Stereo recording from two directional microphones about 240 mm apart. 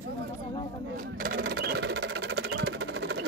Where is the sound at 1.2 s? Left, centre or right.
Right.